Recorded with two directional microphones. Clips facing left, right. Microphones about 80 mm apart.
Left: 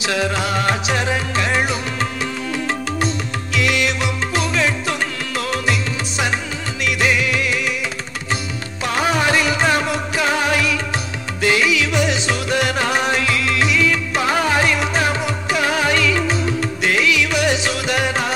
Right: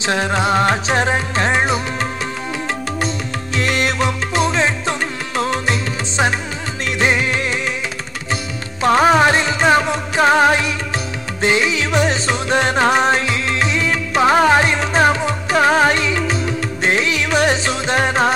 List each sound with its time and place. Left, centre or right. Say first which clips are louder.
0.0 s music: right 3 dB; right
3.5 s music: right 1 dB; right
6.8 s music: right 1 dB; right
8.8 s music: right 6 dB; right